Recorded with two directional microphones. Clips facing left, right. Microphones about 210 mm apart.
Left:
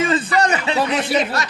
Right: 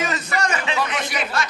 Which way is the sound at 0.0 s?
30° left (ahead or behind).